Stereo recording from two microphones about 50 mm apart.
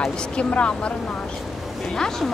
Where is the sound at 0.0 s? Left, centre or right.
Left.